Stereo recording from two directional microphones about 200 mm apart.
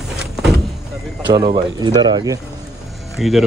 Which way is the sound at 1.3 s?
20° right (ahead or behind).